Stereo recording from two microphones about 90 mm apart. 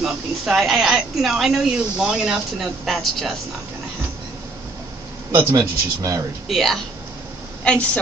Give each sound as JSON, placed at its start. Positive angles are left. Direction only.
{"t": 0.0, "sound": "speech", "side_deg": -5}
{"t": 5.3, "sound": "a man's voice", "side_deg": -35}
{"t": 6.5, "sound": "a woman's voice", "side_deg": 0}